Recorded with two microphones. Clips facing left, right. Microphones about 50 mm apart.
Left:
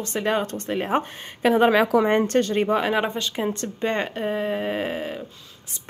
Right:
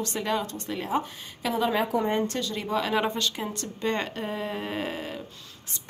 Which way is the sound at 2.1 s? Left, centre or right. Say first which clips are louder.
Left 8 dB; left.